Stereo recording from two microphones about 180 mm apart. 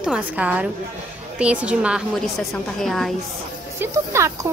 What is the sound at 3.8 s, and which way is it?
Speech, 15° right (ahead or behind).